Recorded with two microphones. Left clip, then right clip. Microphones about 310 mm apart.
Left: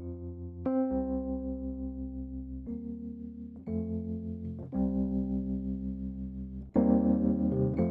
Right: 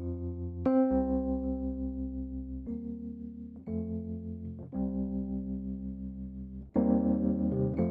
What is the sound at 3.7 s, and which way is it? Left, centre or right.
Music, left.